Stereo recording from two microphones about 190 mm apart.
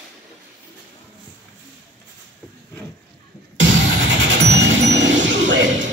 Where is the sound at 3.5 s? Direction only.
70° right (ahead or behind).